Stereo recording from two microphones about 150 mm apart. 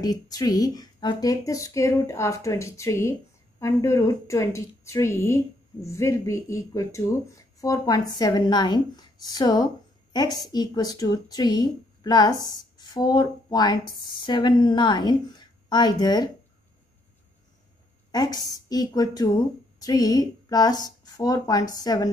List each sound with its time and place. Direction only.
0.0 s speech: 25° left (ahead or behind)
18.1 s speech: 25° left (ahead or behind)